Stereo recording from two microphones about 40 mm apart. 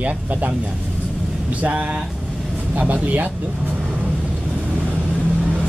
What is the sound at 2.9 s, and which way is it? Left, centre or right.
Speech, right.